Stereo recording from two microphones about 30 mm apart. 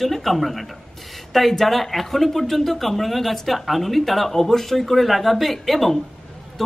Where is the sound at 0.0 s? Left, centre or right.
Centre.